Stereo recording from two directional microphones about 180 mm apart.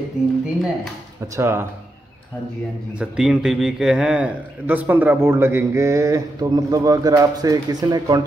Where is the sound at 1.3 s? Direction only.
15° right (ahead or behind).